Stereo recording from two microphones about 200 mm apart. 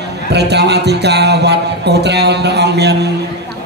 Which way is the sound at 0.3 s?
55° right (ahead or behind).